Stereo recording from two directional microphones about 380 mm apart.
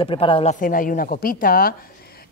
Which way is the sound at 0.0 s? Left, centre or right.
Centre.